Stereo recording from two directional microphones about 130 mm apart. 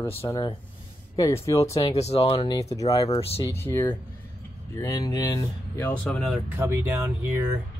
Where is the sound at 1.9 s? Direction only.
55° left (ahead or behind).